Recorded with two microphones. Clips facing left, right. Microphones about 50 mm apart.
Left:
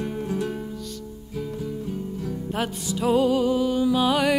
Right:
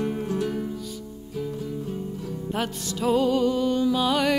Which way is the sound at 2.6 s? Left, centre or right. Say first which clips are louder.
Left 2 dB; centre.